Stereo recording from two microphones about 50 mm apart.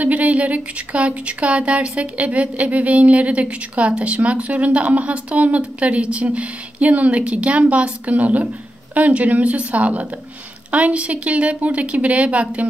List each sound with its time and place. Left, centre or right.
0.0 s speech: right